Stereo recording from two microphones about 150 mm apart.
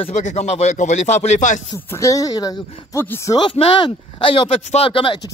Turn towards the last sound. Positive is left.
turn(degrees=35)  # may be behind; listen again after turning